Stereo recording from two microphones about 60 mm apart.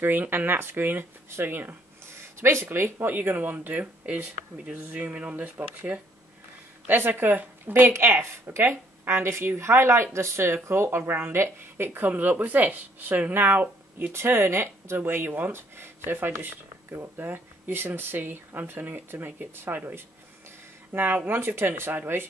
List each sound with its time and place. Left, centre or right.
0.0 s speech: right
2.0 s speech: right
5.3 s speech: right
6.9 s speech: right
20.9 s speech: right